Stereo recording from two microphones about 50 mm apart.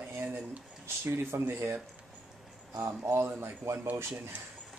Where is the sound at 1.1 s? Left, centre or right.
Right.